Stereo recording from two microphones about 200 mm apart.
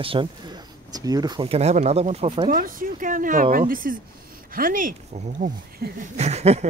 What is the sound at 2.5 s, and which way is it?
Speech, 45° right (ahead or behind).